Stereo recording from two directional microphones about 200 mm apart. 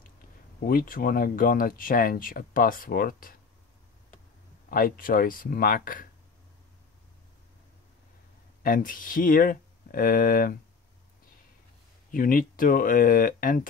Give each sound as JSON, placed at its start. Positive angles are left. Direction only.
{"t": 0.7, "sound": "speech", "side_deg": 45}
{"t": 4.6, "sound": "speech", "side_deg": 45}
{"t": 8.6, "sound": "speech", "side_deg": 45}
{"t": 12.1, "sound": "speech", "side_deg": 45}